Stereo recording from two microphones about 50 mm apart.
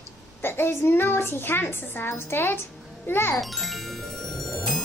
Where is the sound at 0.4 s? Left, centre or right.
Left.